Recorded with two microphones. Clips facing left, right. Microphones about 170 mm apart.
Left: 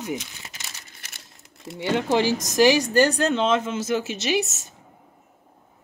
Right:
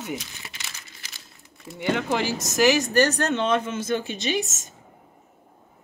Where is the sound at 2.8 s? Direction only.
10° left (ahead or behind).